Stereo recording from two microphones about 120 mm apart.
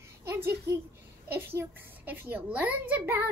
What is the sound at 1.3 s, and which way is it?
A child's voice, 20° right (ahead or behind).